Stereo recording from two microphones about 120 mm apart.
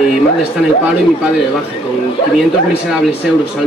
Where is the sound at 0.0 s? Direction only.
5° right (ahead or behind).